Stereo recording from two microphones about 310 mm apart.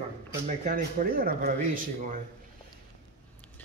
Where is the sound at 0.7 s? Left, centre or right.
Right.